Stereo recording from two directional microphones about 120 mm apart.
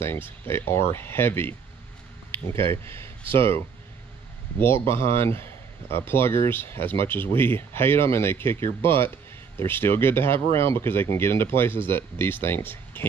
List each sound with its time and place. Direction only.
0.5 s a man's voice: 20° left (ahead or behind)
4.6 s a man's voice: 20° left (ahead or behind)